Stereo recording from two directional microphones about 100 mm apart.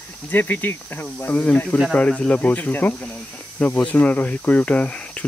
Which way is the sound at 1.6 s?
5° left (ahead or behind).